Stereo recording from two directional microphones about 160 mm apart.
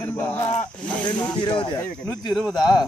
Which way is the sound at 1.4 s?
30° left (ahead or behind).